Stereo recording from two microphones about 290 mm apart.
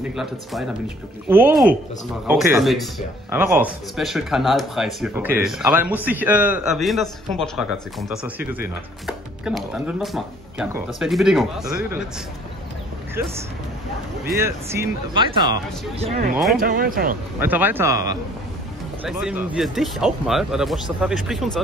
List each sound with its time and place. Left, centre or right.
0.1 s speech: centre
14.3 s speech: centre
16.5 s speech: right
17.4 s speech: centre